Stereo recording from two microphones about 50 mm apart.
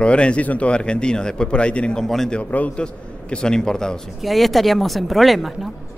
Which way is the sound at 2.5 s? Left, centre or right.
Left.